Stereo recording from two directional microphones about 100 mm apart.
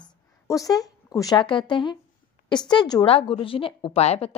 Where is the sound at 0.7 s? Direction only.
40° left (ahead or behind).